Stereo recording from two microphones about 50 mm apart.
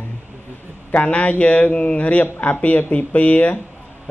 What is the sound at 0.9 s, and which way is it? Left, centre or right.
A man's voice, left.